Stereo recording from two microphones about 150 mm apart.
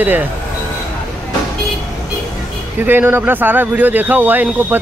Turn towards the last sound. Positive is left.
turn(degrees=-10)  # may be behind; listen again after turning